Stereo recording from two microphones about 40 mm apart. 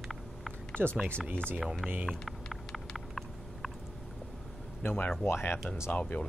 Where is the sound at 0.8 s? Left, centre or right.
Right.